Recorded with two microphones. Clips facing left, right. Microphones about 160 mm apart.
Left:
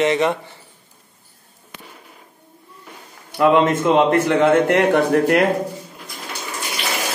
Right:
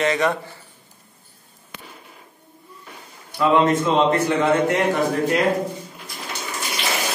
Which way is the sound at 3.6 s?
55° left (ahead or behind).